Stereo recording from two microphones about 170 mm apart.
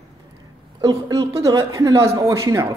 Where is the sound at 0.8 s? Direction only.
20° right (ahead or behind).